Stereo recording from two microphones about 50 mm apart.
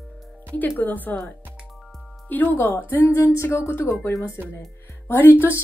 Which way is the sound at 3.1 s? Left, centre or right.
Left.